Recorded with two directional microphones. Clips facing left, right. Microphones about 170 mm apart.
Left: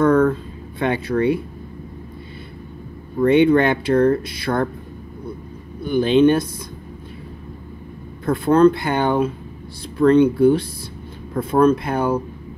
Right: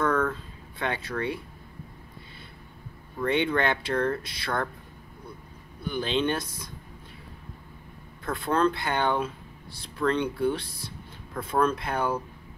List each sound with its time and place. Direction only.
0.0 s a sound: 30° left (ahead or behind)
0.3 s a sound: 15° left (ahead or behind)
3.3 s speech: 10° left (ahead or behind)
5.9 s speech: 15° left (ahead or behind)
8.3 s speech: 10° left (ahead or behind)
10.0 s speech: 20° left (ahead or behind)
10.4 s speech: 10° left (ahead or behind)